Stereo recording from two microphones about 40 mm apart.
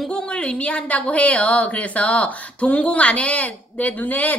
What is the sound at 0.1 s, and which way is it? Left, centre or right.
A woman's voice, left.